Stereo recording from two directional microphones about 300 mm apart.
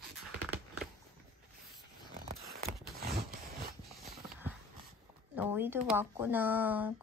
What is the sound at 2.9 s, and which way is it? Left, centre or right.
Zipper, right.